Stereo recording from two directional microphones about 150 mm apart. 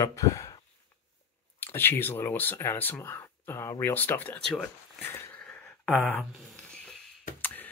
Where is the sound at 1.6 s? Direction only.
15° left (ahead or behind).